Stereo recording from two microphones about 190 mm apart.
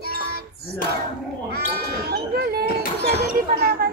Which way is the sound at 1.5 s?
55° right (ahead or behind).